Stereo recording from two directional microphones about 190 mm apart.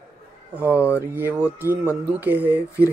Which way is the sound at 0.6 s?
10° right (ahead or behind).